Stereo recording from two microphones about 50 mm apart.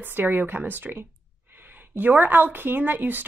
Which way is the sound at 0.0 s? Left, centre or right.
Right.